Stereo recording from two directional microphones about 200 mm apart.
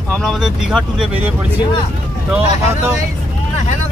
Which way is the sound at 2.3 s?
5° right (ahead or behind).